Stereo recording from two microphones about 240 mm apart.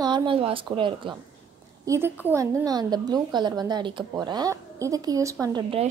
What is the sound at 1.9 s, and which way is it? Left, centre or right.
A woman's voice, centre.